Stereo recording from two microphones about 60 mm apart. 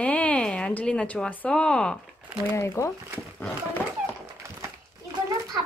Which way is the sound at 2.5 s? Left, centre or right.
Left.